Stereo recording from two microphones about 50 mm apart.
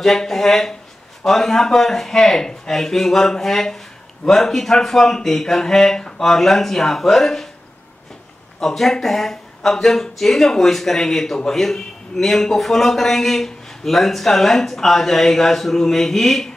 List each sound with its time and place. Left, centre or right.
0.0 s a man's voice: centre
8.5 s a man's voice: centre